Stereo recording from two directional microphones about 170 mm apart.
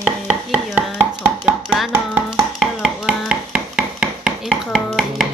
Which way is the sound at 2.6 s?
Centre (ahead or behind).